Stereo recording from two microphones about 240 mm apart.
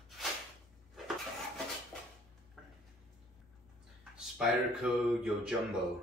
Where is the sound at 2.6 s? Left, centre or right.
Centre.